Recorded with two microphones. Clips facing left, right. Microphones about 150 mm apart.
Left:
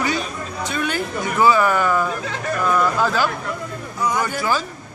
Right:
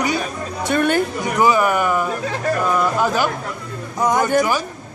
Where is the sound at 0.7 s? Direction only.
50° right (ahead or behind).